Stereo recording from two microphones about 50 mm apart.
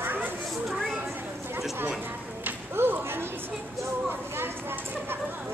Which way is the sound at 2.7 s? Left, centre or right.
Right.